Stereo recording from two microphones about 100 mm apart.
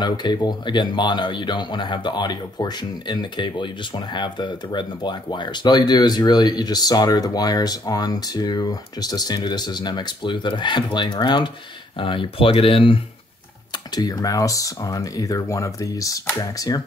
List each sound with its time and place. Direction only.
0.0 s speech: 45° left (ahead or behind); by 13.0 s 65° left (ahead or behind)
13.9 s speech: 40° left (ahead or behind)